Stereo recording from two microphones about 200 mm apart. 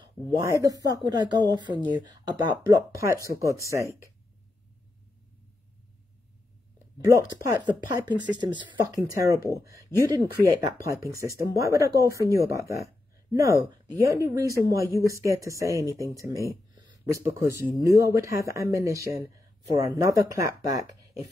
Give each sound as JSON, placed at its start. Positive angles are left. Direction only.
{"t": 0.0, "sound": "speech", "side_deg": -15}
{"t": 7.0, "sound": "speech", "side_deg": -15}
{"t": 9.8, "sound": "speech", "side_deg": 15}
{"t": 10.6, "sound": "speech", "side_deg": -15}